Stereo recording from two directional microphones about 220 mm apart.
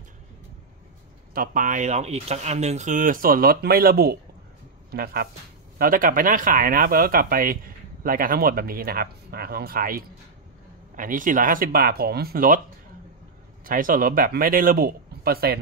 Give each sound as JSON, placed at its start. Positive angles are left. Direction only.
{"t": 1.3, "sound": "speech", "side_deg": -40}
{"t": 13.7, "sound": "speech", "side_deg": -40}